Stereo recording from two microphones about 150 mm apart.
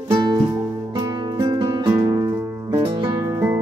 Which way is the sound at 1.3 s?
30° right (ahead or behind).